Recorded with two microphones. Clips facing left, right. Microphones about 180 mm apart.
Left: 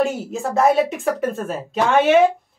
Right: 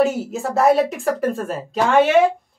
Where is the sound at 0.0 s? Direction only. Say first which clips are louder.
Right 2 dB; centre (ahead or behind).